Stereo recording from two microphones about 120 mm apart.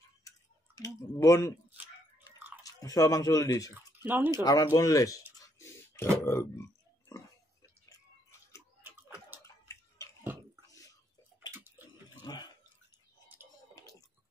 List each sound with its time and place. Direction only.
0.7 s speech: 30° left (ahead or behind)
2.3 s chewing: 15° right (ahead or behind)
2.6 s speech: 30° left (ahead or behind)
3.7 s speech: 15° right (ahead or behind)
4.3 s speech: 35° left (ahead or behind)
5.4 s a sound: 25° left (ahead or behind)
6.2 s speech: 20° left (ahead or behind)
10.7 s whispering: 30° left (ahead or behind)
12.1 s water: 35° left (ahead or behind)